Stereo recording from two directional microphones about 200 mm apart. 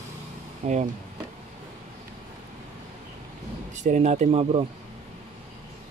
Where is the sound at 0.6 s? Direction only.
35° right (ahead or behind).